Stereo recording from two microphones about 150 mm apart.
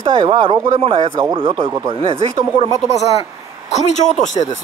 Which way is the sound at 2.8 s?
50° left (ahead or behind).